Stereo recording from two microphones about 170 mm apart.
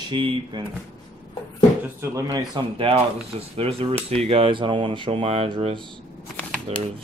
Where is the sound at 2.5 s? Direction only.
35° right (ahead or behind).